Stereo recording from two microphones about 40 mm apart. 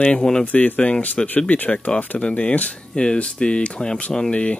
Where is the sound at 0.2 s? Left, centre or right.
Centre.